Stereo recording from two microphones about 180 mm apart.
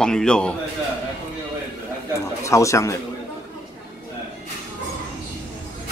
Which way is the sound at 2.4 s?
15° left (ahead or behind).